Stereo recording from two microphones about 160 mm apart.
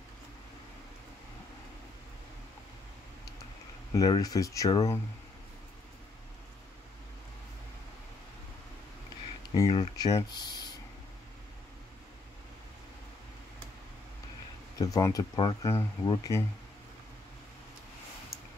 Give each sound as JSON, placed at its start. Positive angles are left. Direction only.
{"t": 3.9, "sound": "speech", "side_deg": 25}
{"t": 9.5, "sound": "speech", "side_deg": 30}
{"t": 14.8, "sound": "speech", "side_deg": 20}